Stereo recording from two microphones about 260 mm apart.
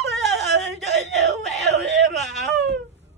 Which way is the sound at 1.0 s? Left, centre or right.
Right.